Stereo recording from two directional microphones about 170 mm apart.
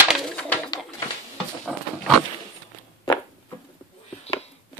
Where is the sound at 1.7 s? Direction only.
Centre (ahead or behind).